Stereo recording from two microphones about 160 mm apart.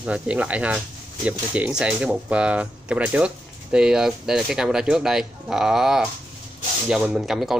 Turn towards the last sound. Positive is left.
turn(degrees=0)  # may be behind; listen again after turning